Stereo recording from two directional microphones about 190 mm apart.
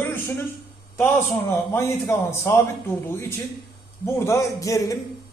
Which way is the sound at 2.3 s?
15° left (ahead or behind).